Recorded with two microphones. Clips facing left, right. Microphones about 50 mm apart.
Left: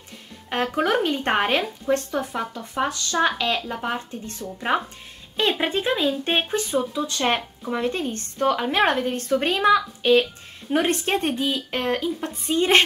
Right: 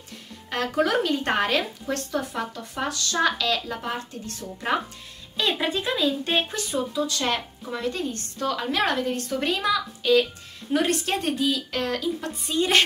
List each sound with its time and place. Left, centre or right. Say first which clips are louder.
0.7 s a woman's voice: even; left